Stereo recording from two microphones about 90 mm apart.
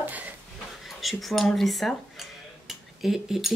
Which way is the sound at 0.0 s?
20° right (ahead or behind).